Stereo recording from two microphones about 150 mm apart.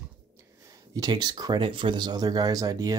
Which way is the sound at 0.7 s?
25° right (ahead or behind).